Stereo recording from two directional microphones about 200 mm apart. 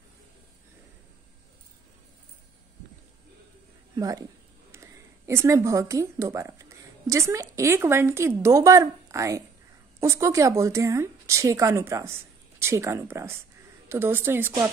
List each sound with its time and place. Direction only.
3.9 s a woman's voice: 20° right (ahead or behind)